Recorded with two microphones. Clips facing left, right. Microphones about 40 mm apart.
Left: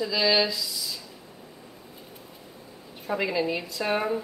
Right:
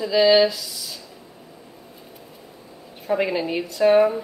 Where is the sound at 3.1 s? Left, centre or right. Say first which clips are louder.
Right 4 dB; right.